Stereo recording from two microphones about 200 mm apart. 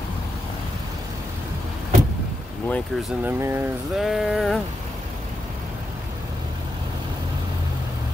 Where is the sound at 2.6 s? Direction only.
5° left (ahead or behind); by 3.7 s 10° right (ahead or behind).